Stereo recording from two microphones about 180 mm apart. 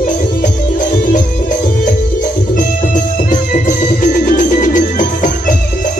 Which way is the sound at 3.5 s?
50° left (ahead or behind).